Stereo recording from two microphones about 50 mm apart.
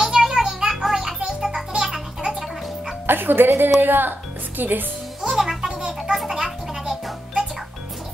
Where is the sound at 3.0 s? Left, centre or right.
Right.